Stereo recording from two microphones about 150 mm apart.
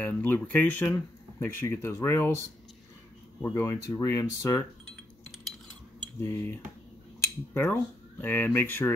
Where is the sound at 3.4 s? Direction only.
20° left (ahead or behind).